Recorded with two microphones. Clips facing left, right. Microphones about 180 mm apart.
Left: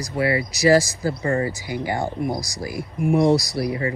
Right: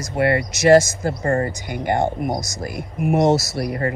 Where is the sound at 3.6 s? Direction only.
60° right (ahead or behind).